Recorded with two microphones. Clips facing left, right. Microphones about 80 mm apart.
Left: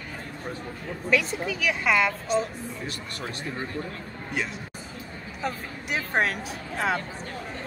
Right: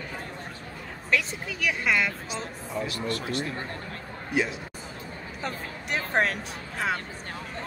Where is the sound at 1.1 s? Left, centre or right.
Centre.